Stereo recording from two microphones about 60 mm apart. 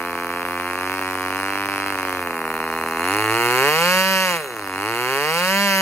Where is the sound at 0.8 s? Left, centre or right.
Left.